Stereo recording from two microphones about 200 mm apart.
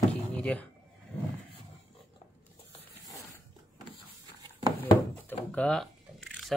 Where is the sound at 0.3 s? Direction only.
5° left (ahead or behind).